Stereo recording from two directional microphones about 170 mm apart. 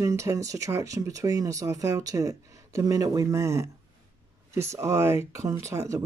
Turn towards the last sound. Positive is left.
turn(degrees=-20)  # may be behind; listen again after turning